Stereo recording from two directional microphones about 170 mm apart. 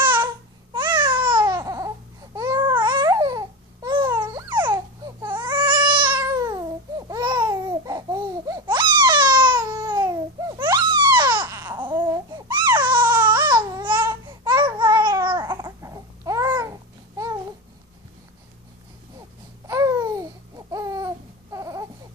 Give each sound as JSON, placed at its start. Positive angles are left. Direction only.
{"t": 0.0, "sound": "babbling", "side_deg": -30}
{"t": 2.3, "sound": "baby cry", "side_deg": -25}
{"t": 2.8, "sound": "babbling", "side_deg": -25}
{"t": 4.2, "sound": "baby cry", "side_deg": -25}
{"t": 6.2, "sound": "babbling", "side_deg": -20}
{"t": 19.7, "sound": "babbling", "side_deg": -20}